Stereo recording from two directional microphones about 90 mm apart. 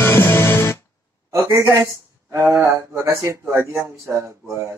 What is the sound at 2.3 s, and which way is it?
Speech, 30° right (ahead or behind).